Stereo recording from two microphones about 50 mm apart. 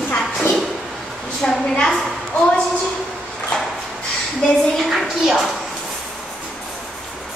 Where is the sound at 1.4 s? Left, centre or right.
Left.